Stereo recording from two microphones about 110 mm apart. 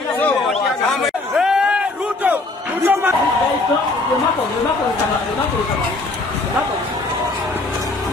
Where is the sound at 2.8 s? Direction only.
25° right (ahead or behind).